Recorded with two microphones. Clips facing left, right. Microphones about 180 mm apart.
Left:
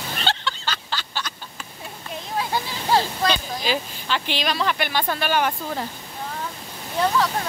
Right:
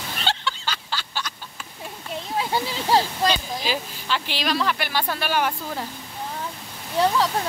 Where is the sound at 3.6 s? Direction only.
5° right (ahead or behind).